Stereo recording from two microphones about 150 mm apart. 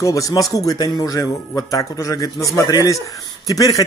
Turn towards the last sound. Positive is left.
turn(degrees=25)  # may be behind; listen again after turning